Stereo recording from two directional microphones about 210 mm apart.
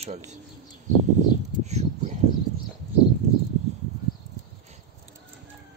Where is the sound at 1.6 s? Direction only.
30° right (ahead or behind).